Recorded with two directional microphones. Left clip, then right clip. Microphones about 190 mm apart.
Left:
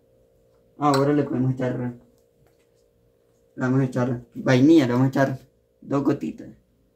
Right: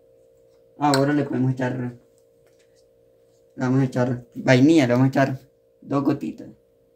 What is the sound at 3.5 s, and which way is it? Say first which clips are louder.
Speech: right 1 dB; 45° right (ahead or behind).